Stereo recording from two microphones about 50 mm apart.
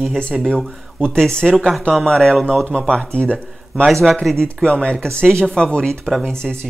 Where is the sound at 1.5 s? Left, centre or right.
Centre.